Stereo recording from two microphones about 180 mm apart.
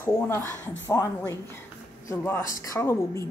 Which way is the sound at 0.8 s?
15° left (ahead or behind).